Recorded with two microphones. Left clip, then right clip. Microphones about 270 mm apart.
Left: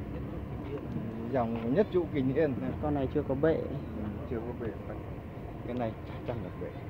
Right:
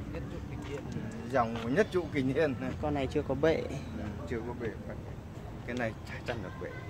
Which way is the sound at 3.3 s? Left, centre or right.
Centre.